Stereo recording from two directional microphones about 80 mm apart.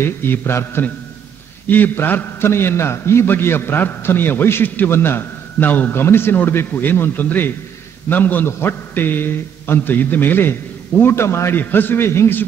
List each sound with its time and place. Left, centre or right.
0.0 s a man's voice: left